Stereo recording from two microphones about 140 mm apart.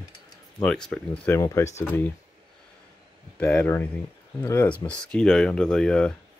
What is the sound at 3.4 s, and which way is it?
Speech, 15° left (ahead or behind).